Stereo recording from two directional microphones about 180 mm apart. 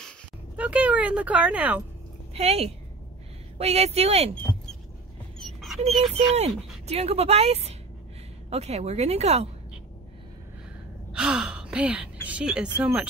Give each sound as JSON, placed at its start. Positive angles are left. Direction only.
{"t": 0.6, "sound": "a sound", "side_deg": -10}
{"t": 2.3, "sound": "speech", "side_deg": -35}
{"t": 5.4, "sound": "a sound", "side_deg": 0}
{"t": 6.9, "sound": "speech", "side_deg": -35}
{"t": 11.1, "sound": "gasp", "side_deg": -5}
{"t": 12.3, "sound": "speech", "side_deg": -5}